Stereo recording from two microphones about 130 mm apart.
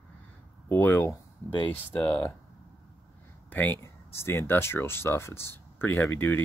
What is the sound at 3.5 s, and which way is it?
Speech, 10° left (ahead or behind).